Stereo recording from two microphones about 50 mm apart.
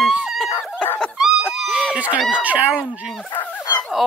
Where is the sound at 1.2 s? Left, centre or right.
Centre.